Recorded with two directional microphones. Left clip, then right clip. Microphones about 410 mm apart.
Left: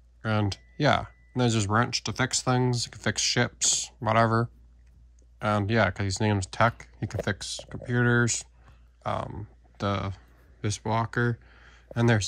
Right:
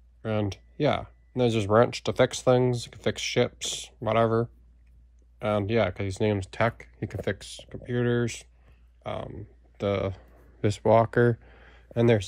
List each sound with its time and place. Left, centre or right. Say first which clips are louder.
0.2 s speech: even; centre